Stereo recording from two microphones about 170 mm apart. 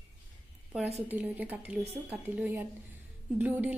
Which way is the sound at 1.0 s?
10° right (ahead or behind).